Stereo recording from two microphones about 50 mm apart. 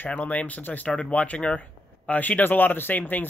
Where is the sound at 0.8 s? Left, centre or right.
Left.